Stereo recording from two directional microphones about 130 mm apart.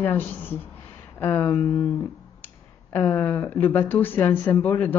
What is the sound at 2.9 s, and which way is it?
Speech, 20° left (ahead or behind).